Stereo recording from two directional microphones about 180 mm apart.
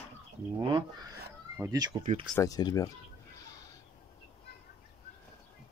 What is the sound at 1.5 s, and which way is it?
Speech, 20° right (ahead or behind).